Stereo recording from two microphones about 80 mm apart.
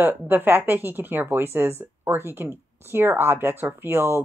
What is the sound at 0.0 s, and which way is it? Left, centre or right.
Speech, right.